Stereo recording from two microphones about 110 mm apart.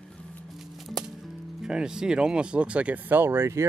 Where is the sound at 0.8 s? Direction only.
Centre (ahead or behind).